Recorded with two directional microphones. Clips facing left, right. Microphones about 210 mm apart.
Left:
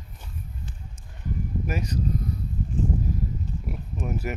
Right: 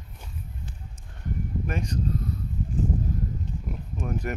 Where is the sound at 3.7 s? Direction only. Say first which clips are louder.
Even; 5° left (ahead or behind).